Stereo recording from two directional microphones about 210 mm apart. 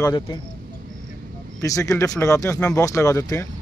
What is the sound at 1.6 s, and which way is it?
Speech, 15° left (ahead or behind).